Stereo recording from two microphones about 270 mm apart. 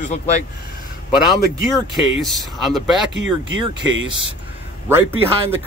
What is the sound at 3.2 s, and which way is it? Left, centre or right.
Speech, right.